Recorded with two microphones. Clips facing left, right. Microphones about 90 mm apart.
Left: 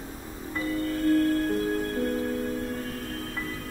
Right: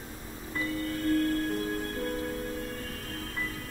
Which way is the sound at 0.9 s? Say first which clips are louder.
Left 5 dB; 35° left (ahead or behind).